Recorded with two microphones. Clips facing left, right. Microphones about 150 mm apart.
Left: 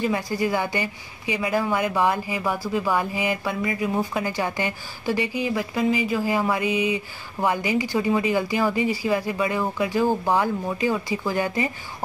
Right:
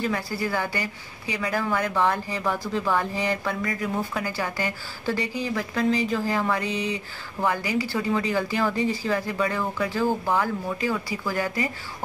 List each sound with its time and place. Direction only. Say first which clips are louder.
0.0 s a woman's voice: left 3 dB; 15° left (ahead or behind)